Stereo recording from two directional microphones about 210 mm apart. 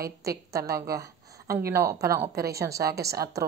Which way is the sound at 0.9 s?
15° right (ahead or behind).